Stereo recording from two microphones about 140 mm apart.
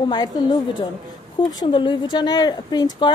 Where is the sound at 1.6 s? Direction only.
35° left (ahead or behind).